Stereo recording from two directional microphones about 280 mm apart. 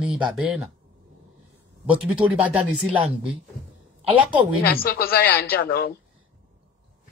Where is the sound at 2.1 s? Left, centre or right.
Centre.